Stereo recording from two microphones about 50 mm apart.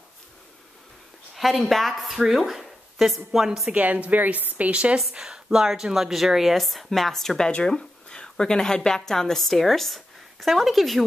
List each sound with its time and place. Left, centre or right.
1.3 s speech: centre
3.7 s a woman's voice: right
5.1 s speech: centre